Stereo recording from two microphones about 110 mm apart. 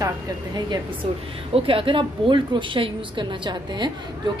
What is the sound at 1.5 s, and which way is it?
A woman's voice, 55° right (ahead or behind).